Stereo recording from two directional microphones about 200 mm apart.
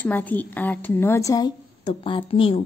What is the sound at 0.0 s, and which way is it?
A woman's voice, 10° left (ahead or behind).